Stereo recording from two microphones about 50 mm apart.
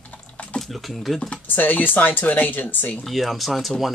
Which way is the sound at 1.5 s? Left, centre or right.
Left.